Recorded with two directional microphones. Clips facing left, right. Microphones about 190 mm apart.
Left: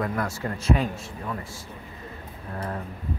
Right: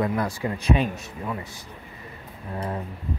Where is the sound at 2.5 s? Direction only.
15° right (ahead or behind).